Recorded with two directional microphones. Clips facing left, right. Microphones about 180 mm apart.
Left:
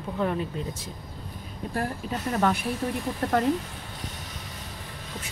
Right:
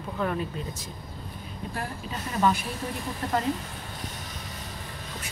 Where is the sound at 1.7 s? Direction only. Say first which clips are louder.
Left 6 dB; 50° left (ahead or behind).